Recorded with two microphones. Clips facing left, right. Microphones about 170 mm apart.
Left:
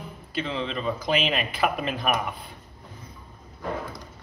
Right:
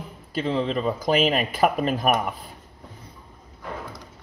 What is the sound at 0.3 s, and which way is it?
Speech, 40° right (ahead or behind).